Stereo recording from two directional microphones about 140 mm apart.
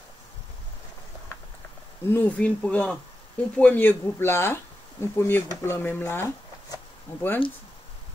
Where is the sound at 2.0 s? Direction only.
15° left (ahead or behind).